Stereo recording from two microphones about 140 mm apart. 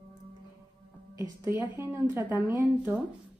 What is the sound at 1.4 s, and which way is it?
A woman's voice, 20° right (ahead or behind).